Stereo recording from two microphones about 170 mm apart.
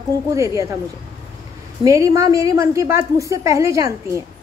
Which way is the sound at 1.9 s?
20° right (ahead or behind).